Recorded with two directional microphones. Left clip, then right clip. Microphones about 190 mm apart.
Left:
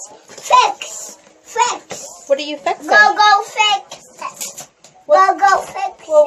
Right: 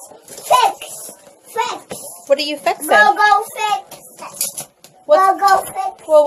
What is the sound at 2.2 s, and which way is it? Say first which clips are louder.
Speech: right 1 dB; centre (ahead or behind).